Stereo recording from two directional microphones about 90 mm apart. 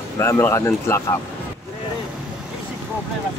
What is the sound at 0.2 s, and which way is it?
Speech, 30° left (ahead or behind).